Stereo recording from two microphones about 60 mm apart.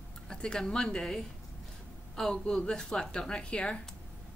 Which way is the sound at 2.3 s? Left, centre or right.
Centre.